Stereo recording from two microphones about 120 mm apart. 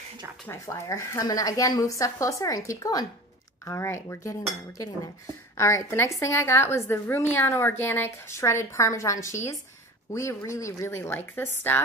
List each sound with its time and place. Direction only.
0.5 s speech: 25° left (ahead or behind)